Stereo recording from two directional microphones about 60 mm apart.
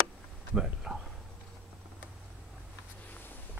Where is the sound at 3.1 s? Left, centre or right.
Left.